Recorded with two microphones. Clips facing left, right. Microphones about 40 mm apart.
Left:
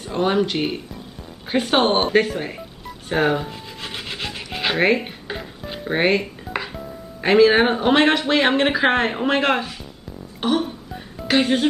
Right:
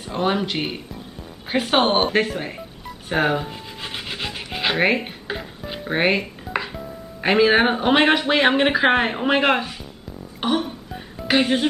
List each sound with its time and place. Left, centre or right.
0.1 s speech: centre
3.1 s dog: centre
10.4 s music: centre